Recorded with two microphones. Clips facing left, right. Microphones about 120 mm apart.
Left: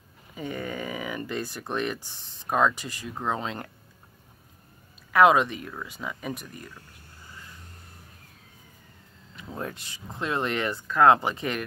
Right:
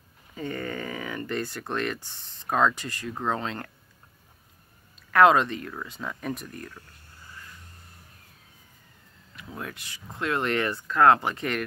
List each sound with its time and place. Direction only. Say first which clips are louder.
0.3 s speech: right 1 dB; 15° left (ahead or behind)
5.1 s speech: even; 15° left (ahead or behind)
9.3 s speech: left 3 dB; 25° left (ahead or behind)